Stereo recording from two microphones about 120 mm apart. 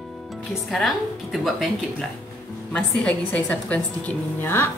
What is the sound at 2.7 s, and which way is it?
A woman's voice, 10° left (ahead or behind).